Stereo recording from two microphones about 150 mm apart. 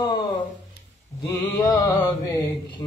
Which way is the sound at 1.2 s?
20° left (ahead or behind).